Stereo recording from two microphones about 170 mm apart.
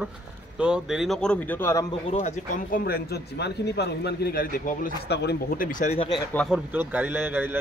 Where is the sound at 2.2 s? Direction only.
50° left (ahead or behind).